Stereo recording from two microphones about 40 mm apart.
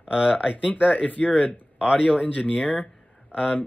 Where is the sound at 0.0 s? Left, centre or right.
Right.